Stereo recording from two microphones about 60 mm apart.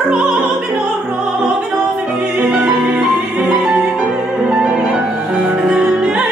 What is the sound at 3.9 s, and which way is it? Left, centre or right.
Music, centre.